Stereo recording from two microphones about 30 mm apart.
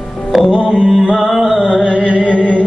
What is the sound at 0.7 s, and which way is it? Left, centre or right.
Music, left.